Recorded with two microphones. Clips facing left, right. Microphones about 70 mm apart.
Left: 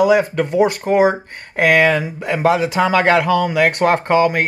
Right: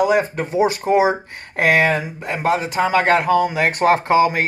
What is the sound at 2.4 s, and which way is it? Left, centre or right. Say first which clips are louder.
Speech: left 3 dB; left.